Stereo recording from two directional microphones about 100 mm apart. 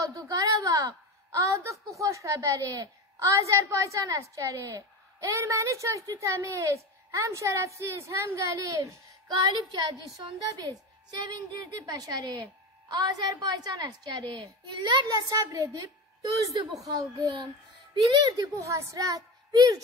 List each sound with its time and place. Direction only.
0.0 s a woman's voice: 35° right (ahead or behind)
16.8 s a woman's voice: 40° right (ahead or behind)